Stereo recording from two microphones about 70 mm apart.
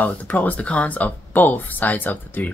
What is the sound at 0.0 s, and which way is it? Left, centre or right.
Speech, left.